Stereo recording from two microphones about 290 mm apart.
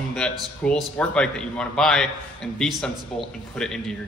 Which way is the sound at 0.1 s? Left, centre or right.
Centre.